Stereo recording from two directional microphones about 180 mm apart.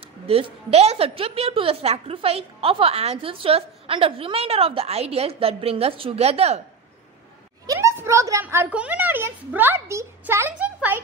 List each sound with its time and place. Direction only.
0.3 s a woman's voice: 35° right (ahead or behind)
7.6 s speech: 15° right (ahead or behind)